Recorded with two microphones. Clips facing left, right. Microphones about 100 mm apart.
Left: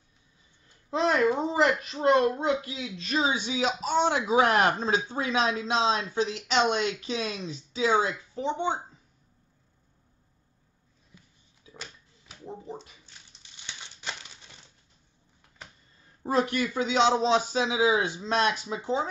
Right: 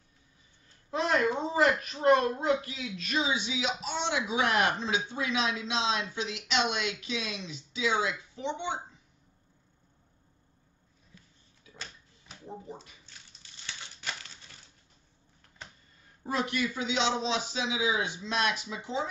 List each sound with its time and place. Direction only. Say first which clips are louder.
0.8 s a child's voice: left 4 dB; 25° left (ahead or behind); by 8.7 s 40° left (ahead or behind)
11.7 s a sound: left 2 dB; centre (ahead or behind)
13.0 s crumpling: even; 15° left (ahead or behind)
16.3 s a child's voice: left 5 dB; 40° left (ahead or behind)